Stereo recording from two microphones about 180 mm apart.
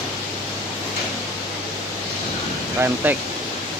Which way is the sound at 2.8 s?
10° right (ahead or behind).